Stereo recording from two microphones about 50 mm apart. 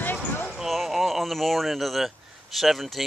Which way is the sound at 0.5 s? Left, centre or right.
Centre.